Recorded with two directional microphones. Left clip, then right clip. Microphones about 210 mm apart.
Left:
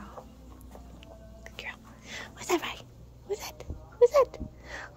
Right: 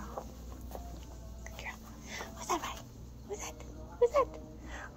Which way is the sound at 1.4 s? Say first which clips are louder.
Left 4 dB; 50° left (ahead or behind).